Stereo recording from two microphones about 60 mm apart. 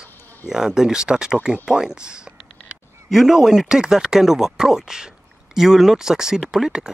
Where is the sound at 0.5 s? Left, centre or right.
Centre.